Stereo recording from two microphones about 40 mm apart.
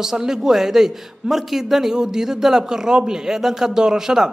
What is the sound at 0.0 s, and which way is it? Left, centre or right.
A man's voice, centre.